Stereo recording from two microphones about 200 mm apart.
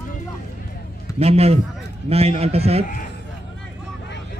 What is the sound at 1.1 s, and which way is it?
Speech, 30° right (ahead or behind).